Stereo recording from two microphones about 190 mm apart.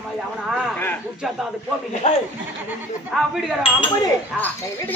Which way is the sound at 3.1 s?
Centre (ahead or behind).